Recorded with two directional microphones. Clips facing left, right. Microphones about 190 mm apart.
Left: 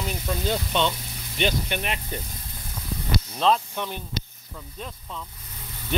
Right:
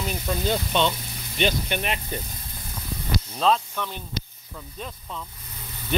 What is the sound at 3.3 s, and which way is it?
Speech, centre (ahead or behind).